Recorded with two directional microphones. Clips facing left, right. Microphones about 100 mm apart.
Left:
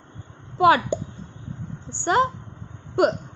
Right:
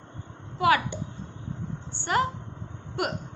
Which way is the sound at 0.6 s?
25° left (ahead or behind).